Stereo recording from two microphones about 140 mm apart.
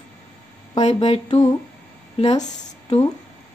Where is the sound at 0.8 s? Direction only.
45° left (ahead or behind).